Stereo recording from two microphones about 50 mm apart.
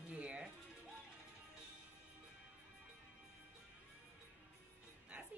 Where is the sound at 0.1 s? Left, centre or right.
Right.